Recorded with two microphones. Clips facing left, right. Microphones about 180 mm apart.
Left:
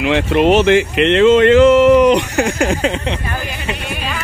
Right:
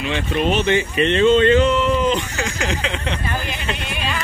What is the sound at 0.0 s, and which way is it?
Speech, 75° left (ahead or behind).